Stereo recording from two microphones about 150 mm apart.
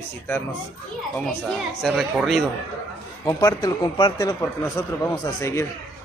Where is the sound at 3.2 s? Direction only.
25° left (ahead or behind).